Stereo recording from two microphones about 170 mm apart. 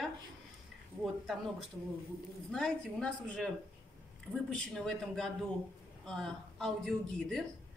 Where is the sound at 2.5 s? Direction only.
5° left (ahead or behind).